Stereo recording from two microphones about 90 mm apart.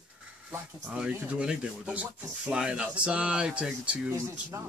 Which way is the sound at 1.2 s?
10° right (ahead or behind).